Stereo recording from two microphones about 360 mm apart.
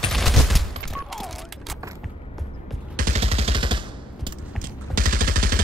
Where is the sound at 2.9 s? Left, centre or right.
Right.